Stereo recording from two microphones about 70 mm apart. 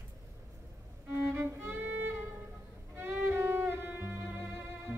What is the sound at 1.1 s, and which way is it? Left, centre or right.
Music, right.